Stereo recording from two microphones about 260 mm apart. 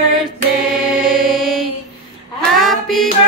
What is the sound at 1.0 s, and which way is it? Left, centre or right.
Music, centre.